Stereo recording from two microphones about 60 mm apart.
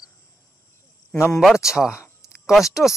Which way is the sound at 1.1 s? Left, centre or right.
Left.